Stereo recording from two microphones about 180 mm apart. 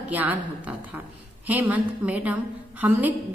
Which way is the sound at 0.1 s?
10° right (ahead or behind).